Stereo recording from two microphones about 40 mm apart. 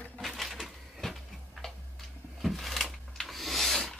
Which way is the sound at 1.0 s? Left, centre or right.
Centre.